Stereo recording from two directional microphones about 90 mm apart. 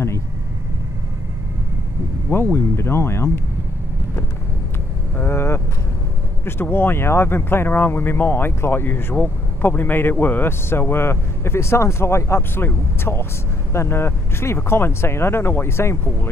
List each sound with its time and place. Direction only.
2.5 s speech: 30° left (ahead or behind)
5.1 s vehicle: 25° left (ahead or behind)
6.4 s speech: 25° left (ahead or behind)